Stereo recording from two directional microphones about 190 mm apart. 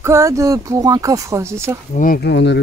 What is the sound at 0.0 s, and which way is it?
Speech, 15° right (ahead or behind).